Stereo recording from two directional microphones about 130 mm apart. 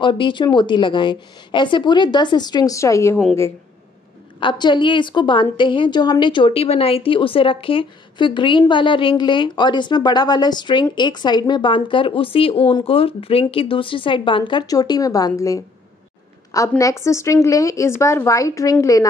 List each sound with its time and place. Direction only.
0.0 s a woman's voice: 40° left (ahead or behind); by 3.2 s 20° left (ahead or behind)
4.4 s a woman's voice: 40° left (ahead or behind)